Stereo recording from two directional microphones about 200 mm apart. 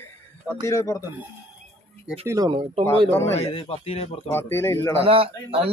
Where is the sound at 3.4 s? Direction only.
30° left (ahead or behind).